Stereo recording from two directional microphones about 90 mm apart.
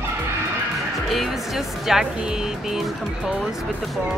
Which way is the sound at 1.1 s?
Centre (ahead or behind).